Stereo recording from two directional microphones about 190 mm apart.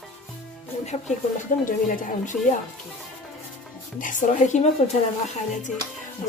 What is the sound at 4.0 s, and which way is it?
Speech, 40° left (ahead or behind).